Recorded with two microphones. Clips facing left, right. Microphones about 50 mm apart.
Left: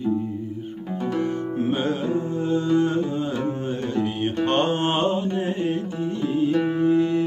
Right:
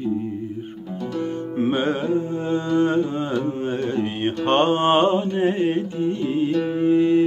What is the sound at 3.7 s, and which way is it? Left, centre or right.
Mantra, right.